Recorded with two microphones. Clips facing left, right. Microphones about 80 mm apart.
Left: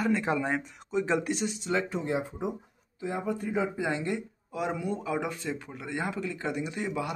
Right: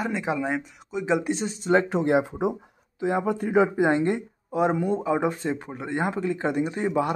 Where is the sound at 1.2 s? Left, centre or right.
Right.